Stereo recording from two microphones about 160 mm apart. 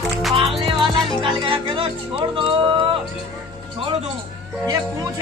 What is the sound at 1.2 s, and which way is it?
Speech, 30° right (ahead or behind).